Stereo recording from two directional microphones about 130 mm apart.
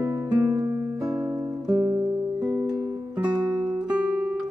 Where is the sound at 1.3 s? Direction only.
30° right (ahead or behind).